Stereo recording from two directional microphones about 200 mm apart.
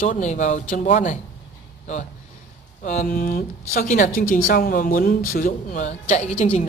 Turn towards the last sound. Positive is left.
turn(degrees=35)  # may be behind; listen again after turning